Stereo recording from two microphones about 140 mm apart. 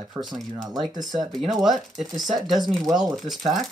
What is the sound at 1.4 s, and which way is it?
Speech, centre (ahead or behind).